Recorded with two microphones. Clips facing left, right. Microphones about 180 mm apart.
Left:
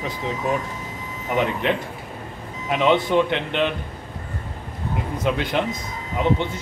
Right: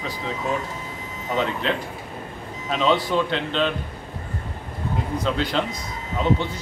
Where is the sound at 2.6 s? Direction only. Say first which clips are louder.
Left 2 dB; 15° left (ahead or behind).